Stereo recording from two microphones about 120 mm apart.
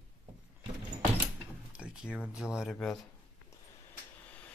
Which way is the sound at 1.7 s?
10° right (ahead or behind).